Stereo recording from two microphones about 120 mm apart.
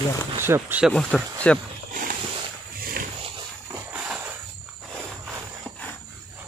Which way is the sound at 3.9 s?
10° right (ahead or behind).